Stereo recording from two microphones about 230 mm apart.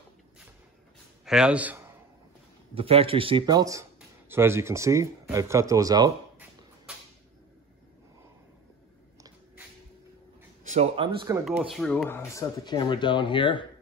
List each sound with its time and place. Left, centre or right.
1.2 s speech: centre
2.7 s speech: right
6.9 s a sound: centre
10.6 s speech: right
11.7 s speech: centre; by 13.7 s left